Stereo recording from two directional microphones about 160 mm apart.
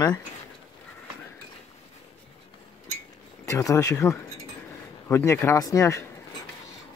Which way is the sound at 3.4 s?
20° left (ahead or behind).